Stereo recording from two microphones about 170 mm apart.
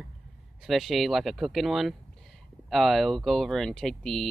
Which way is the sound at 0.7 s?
Centre (ahead or behind).